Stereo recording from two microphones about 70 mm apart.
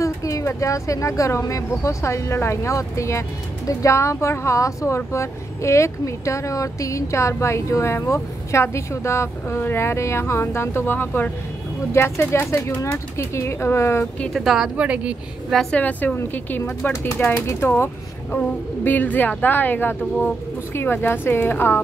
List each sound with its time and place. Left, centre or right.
0.0 s speech: left
14.3 s speech: centre
14.8 s speech: centre
15.7 s speech: left
16.2 s speech: left
18.9 s speech: left